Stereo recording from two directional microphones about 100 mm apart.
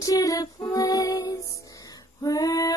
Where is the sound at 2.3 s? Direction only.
40° left (ahead or behind).